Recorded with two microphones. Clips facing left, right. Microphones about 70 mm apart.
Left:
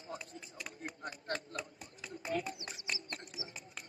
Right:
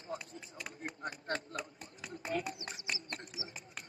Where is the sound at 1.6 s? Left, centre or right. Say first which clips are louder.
Right 1 dB; right.